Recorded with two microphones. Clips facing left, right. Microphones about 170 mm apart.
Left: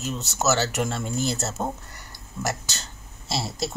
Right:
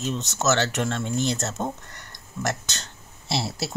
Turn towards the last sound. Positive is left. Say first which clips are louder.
# right 1 dB
turn(degrees=0)  # may be behind; listen again after turning